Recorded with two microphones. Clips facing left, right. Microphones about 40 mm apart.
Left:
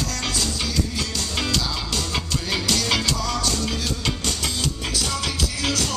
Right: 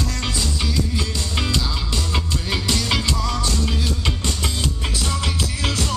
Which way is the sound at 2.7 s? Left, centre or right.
Centre.